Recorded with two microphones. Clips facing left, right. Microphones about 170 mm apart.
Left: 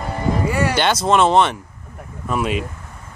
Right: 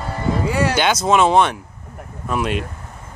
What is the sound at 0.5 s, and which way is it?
Speech, 5° right (ahead or behind).